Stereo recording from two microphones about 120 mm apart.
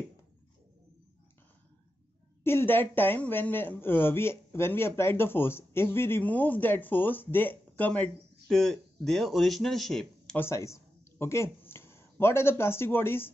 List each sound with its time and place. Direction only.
2.4 s speech: 20° left (ahead or behind)
10.4 s a man's voice: 25° left (ahead or behind)